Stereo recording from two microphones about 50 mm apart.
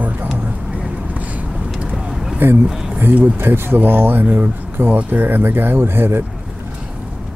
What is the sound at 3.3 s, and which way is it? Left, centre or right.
Speech, right.